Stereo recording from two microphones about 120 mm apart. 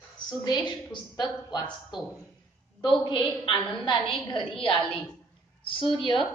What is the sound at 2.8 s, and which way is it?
A woman's voice, 40° left (ahead or behind).